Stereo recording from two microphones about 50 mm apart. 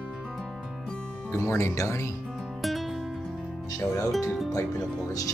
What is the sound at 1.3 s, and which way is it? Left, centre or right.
Music, left.